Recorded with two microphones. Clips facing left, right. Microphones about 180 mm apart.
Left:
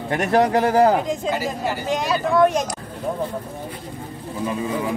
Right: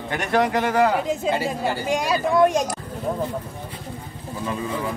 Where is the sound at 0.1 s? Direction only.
30° left (ahead or behind).